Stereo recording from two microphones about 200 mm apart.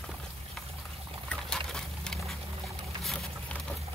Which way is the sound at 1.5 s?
5° left (ahead or behind).